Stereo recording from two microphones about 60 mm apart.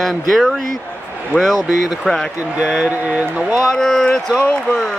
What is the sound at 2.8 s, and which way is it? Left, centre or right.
Speech, right.